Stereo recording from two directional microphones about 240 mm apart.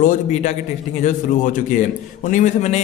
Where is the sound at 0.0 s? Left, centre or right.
Left.